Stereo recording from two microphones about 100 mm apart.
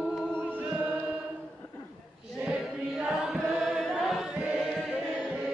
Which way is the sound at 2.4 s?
10° right (ahead or behind).